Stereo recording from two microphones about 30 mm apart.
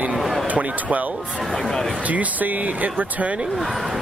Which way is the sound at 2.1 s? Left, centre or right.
Right.